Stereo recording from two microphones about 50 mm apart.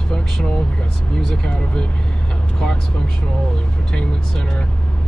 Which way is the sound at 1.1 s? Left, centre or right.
Centre.